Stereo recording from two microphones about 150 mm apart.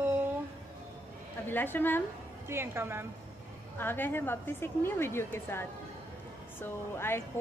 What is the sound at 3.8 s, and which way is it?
A woman's voice, 15° left (ahead or behind).